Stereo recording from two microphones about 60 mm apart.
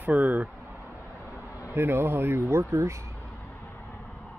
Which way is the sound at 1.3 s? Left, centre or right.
Left.